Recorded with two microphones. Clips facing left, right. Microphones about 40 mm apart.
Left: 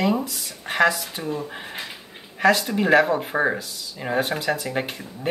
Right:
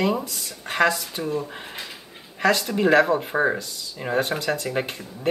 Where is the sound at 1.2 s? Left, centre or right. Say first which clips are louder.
Right 1 dB; centre.